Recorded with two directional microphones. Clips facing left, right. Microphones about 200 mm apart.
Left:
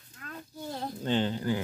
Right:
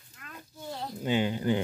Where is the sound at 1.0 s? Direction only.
10° right (ahead or behind).